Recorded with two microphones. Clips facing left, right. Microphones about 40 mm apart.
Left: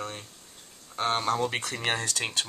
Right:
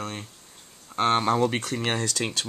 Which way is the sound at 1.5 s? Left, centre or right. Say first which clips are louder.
Right 2 dB; centre.